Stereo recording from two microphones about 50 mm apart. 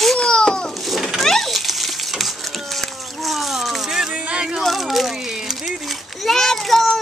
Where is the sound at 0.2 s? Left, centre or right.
Centre.